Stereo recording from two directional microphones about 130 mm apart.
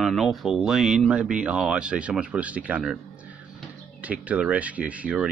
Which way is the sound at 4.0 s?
10° right (ahead or behind).